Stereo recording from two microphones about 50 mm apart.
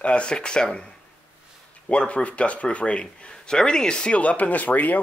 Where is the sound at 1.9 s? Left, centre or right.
Left.